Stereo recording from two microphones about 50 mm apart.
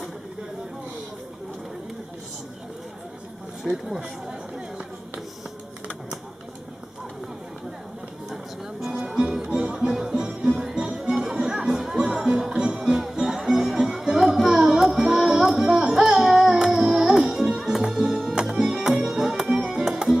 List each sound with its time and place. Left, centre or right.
3.6 s chatter: centre
9.1 s music: centre
12.0 s music: centre